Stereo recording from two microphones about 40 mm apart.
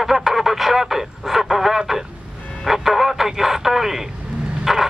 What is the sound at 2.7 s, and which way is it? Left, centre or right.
Radio, centre.